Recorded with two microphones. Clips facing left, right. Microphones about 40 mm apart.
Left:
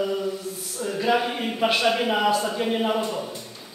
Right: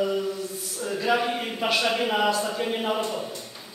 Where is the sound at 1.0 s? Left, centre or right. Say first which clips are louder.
Left 2 dB; centre.